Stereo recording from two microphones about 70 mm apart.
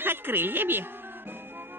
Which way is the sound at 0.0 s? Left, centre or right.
Right.